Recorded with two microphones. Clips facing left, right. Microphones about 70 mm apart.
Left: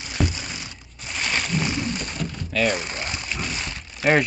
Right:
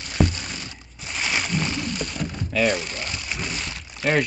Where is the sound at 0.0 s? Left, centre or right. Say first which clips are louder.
Right 3 dB; centre.